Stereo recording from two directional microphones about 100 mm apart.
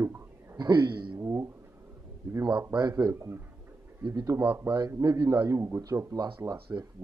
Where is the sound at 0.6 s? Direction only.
40° right (ahead or behind).